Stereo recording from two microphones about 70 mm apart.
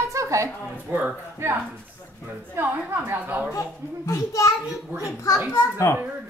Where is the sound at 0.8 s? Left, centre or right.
Right.